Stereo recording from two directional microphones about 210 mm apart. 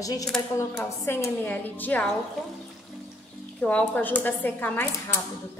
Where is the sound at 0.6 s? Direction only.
10° left (ahead or behind).